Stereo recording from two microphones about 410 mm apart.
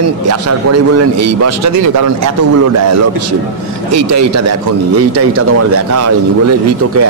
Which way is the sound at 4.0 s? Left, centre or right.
Right.